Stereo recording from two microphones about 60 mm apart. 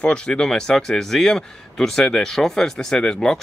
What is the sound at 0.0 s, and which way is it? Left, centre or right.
Speech, centre.